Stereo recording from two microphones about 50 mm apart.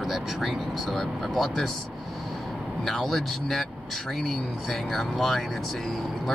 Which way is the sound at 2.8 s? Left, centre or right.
Centre.